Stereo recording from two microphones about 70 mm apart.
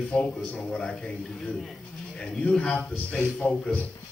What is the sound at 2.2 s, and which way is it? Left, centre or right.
A man's voice, centre.